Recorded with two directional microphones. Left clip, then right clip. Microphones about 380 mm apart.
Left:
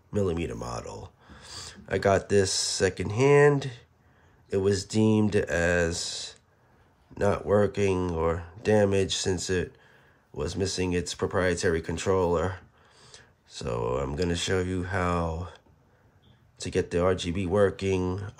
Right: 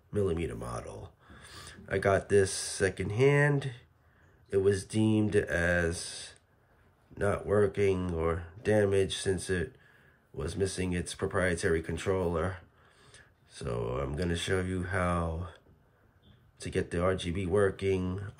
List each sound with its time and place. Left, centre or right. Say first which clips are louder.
0.1 s speech: left 3 dB; centre